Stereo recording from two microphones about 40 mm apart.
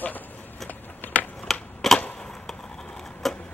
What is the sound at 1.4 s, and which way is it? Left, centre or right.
Typewriter, centre.